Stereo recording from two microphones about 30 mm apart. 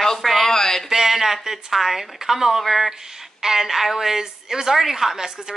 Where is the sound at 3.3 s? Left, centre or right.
Centre.